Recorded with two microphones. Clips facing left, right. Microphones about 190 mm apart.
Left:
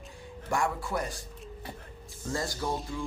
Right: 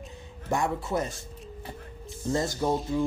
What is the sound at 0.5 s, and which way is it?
Speech, 20° right (ahead or behind).